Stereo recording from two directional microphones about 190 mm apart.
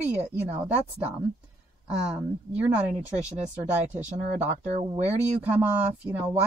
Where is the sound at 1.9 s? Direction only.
5° right (ahead or behind).